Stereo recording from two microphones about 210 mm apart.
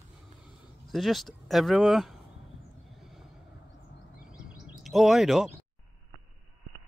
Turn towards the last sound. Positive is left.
turn(degrees=0)  # may be behind; listen again after turning